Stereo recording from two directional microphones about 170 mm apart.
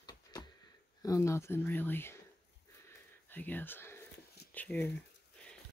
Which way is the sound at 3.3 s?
10° left (ahead or behind).